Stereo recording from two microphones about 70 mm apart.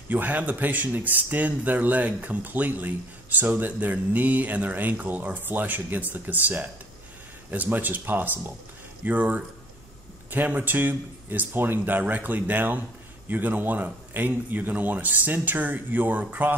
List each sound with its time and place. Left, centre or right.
0.1 s speech: right